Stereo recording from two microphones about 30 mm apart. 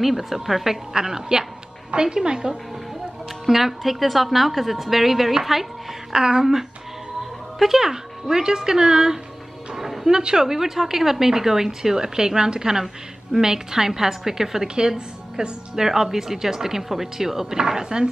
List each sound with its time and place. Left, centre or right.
0.0 s a woman's voice: centre
0.9 s speech: centre
3.4 s a woman's voice: centre
6.1 s speech: right
7.5 s speech: centre
9.8 s music: centre
10.1 s a woman's voice: right
14.8 s a woman's voice: right